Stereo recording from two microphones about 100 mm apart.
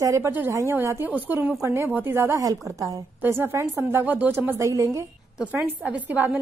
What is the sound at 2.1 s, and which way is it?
Speech, 30° right (ahead or behind).